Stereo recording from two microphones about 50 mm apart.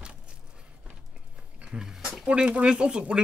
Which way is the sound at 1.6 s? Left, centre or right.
Centre.